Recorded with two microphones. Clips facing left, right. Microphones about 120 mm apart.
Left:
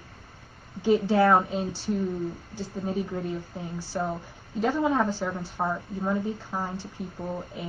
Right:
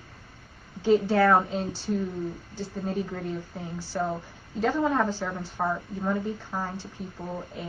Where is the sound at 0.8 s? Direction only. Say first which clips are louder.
Even; 15° left (ahead or behind).